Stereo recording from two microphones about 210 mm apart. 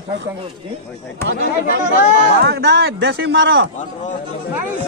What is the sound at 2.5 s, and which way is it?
A man's voice, 55° right (ahead or behind).